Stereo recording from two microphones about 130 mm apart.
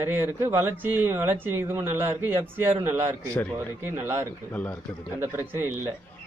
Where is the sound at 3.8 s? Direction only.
15° right (ahead or behind).